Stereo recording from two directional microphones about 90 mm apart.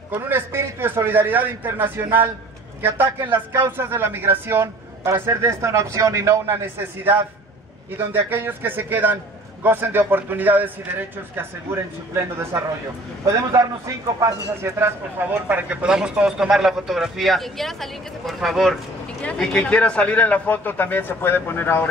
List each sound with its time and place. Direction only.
0.1 s a man's voice: 25° right (ahead or behind)
15.4 s a man's voice: 15° right (ahead or behind); by 21.8 s 25° left (ahead or behind)